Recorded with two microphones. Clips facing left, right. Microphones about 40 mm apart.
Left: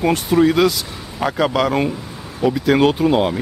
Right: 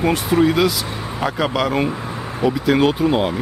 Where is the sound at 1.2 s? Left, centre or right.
Centre.